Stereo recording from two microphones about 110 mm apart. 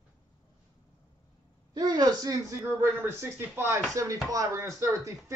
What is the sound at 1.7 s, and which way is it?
Speech, 35° right (ahead or behind).